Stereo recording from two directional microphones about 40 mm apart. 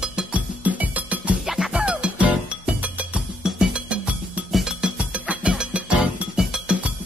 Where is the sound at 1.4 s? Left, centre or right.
Centre.